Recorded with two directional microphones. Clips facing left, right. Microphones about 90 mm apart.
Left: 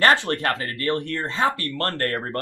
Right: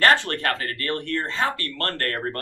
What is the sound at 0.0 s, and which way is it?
Speech, 20° left (ahead or behind).